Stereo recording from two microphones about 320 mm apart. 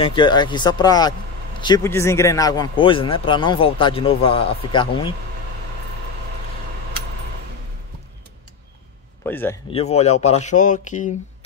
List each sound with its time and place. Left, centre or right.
0.0 s a man's voice: centre
9.2 s a man's voice: centre
9.7 s speech: centre